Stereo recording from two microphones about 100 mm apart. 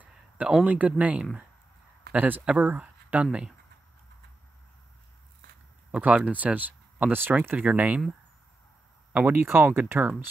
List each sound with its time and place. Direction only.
0.0 s a sound: 10° right (ahead or behind)
0.7 s speech: 15° right (ahead or behind)
5.9 s speech: 15° right (ahead or behind)
9.1 s speech: 20° right (ahead or behind)